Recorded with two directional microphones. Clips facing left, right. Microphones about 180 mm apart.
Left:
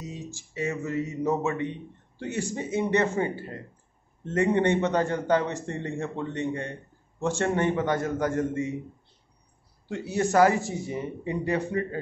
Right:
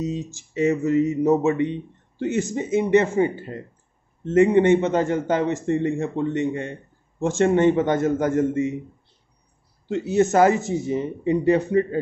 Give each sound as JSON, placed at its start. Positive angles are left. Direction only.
{"t": 0.0, "sound": "speech", "side_deg": -20}
{"t": 9.8, "sound": "speech", "side_deg": -20}